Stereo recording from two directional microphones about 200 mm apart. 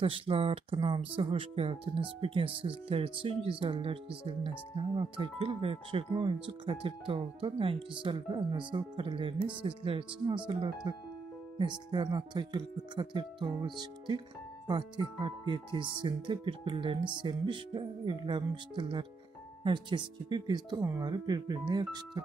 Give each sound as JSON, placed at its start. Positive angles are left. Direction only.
{"t": 0.0, "sound": "speech", "side_deg": -30}